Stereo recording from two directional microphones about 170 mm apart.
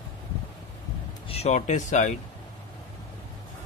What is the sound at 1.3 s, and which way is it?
Speech, 40° left (ahead or behind).